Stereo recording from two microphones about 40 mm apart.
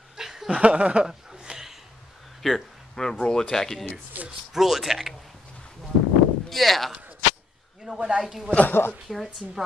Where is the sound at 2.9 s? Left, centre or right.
Centre.